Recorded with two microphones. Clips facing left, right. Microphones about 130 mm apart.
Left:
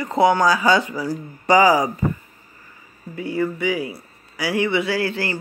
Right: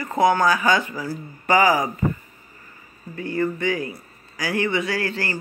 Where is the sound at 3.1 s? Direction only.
10° left (ahead or behind).